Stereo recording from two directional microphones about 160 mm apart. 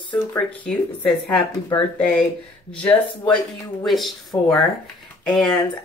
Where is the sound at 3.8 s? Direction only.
Centre (ahead or behind).